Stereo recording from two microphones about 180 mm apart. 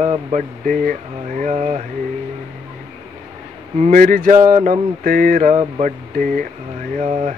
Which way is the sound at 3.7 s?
45° right (ahead or behind).